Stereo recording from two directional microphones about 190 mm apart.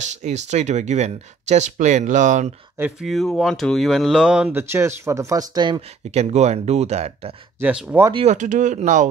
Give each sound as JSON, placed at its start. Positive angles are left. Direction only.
{"t": 0.0, "sound": "speech", "side_deg": -40}
{"t": 2.8, "sound": "speech", "side_deg": 0}
{"t": 7.6, "sound": "speech", "side_deg": -5}
{"t": 8.1, "sound": "speech", "side_deg": -35}